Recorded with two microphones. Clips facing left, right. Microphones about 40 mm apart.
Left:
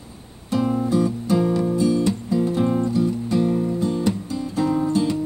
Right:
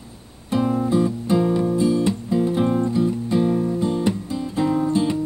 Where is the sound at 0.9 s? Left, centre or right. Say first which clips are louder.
Right 1 dB; right.